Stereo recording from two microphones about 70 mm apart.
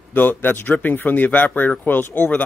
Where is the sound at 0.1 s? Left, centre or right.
Left.